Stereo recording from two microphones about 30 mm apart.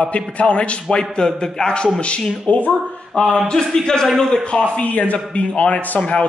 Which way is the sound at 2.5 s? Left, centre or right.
Left.